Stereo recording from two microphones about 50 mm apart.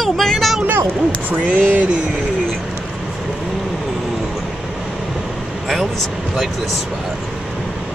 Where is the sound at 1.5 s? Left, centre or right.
Right.